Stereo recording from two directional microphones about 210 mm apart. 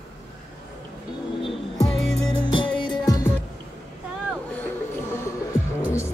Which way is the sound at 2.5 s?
25° left (ahead or behind).